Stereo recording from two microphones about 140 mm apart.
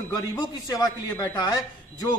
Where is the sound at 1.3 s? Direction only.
25° left (ahead or behind).